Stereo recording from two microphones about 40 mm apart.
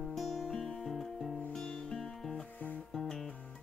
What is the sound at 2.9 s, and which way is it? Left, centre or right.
Music, centre.